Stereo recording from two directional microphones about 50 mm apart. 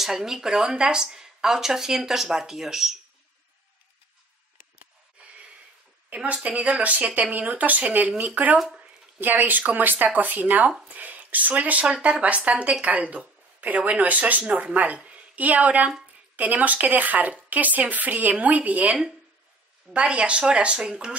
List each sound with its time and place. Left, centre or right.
0.0 s speech: centre
5.2 s snort: right
6.0 s a woman's voice: right